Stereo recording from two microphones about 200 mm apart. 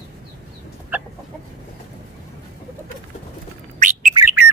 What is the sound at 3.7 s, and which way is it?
Bird, 40° right (ahead or behind).